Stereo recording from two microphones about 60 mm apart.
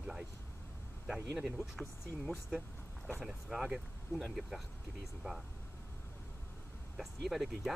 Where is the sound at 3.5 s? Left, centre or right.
Centre.